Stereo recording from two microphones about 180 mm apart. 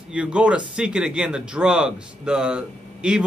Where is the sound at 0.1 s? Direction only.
5° right (ahead or behind).